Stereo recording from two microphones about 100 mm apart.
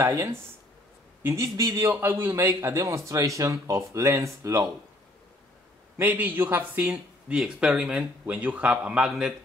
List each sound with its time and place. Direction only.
0.0 s a man's voice: 30° right (ahead or behind)
5.9 s speech: 15° right (ahead or behind)